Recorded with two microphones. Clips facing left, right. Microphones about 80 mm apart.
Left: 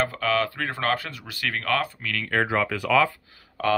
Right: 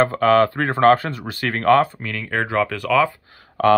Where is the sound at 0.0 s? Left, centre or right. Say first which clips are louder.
Right 9 dB; right.